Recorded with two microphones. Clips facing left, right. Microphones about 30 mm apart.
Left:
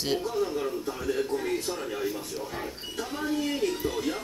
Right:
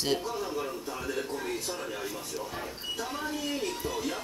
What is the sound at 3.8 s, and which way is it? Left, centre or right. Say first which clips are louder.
Television: left 4 dB; left.